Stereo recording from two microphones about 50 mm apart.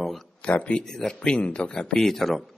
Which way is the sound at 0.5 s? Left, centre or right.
Left.